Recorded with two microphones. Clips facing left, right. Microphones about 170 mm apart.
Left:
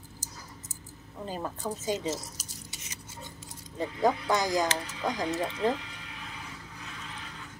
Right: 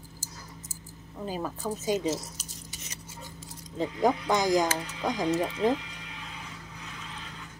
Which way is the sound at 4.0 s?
15° right (ahead or behind).